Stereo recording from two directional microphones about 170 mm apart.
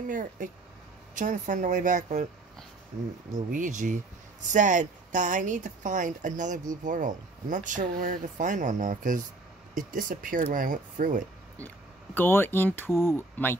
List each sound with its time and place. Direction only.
0.0 s speech: 50° right (ahead or behind)
3.3 s speech: 50° right (ahead or behind)
11.5 s speech: 10° left (ahead or behind)